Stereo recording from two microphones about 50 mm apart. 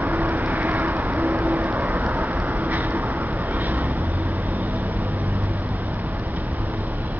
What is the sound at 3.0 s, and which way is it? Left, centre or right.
Vehicle, right.